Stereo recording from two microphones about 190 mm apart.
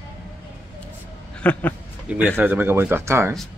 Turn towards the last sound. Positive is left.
turn(degrees=-15)  # may be behind; listen again after turning